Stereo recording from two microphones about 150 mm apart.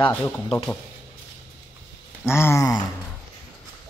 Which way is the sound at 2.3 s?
15° left (ahead or behind).